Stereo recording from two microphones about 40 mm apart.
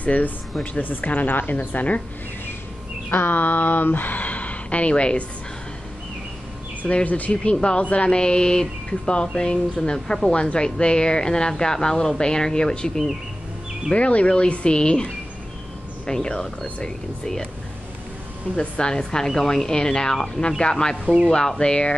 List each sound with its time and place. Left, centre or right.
0.0 s speech: left
3.1 s speech: left
6.8 s speech: left
7.4 s speech: left
10.0 s speech: centre
13.9 s speech: left
16.1 s speech: centre
18.6 s speech: left